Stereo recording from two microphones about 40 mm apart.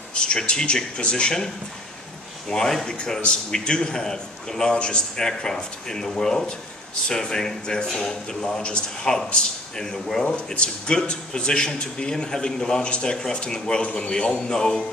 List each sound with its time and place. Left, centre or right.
0.1 s a man's voice: left
2.5 s speech: centre
10.2 s a man's voice: left